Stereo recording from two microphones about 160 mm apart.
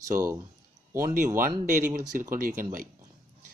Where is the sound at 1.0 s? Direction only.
60° right (ahead or behind).